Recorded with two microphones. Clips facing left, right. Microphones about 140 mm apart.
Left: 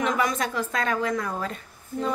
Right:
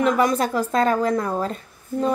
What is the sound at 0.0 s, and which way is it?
Speech, 35° right (ahead or behind).